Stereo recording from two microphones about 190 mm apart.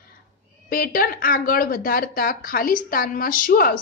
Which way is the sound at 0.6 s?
50° left (ahead or behind).